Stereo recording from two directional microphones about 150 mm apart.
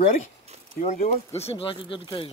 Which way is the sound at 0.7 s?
50° left (ahead or behind).